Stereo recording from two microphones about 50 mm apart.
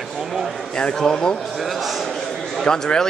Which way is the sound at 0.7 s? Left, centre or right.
Centre.